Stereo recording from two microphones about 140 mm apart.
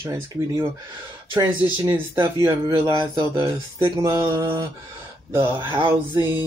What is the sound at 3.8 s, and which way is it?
Speech, 20° right (ahead or behind).